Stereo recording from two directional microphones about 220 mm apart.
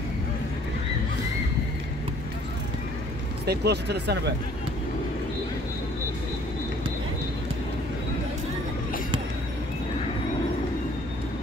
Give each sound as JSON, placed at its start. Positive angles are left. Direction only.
{"t": 3.4, "sound": "speech", "side_deg": -50}